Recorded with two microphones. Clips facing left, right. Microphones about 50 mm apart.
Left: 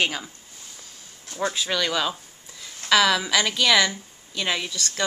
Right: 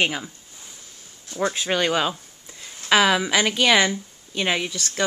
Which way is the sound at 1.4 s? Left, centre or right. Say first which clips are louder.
Right 3 dB; right.